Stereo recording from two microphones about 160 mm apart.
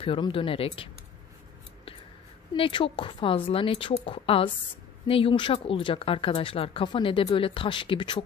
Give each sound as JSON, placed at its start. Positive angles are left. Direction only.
{"t": 0.0, "sound": "speech", "side_deg": 35}
{"t": 2.5, "sound": "speech", "side_deg": 35}